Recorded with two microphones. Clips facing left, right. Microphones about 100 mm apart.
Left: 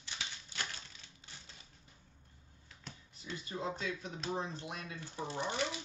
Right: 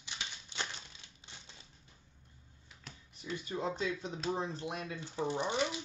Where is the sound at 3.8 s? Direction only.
25° right (ahead or behind).